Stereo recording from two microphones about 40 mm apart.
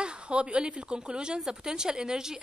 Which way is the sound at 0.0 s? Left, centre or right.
Right.